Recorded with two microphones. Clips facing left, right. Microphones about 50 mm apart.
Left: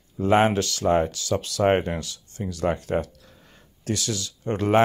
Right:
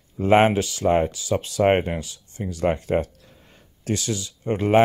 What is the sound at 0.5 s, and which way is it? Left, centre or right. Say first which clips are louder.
Speech: right 1 dB; centre.